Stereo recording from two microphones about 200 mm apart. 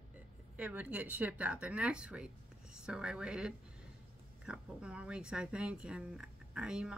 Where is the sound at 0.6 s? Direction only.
5° right (ahead or behind).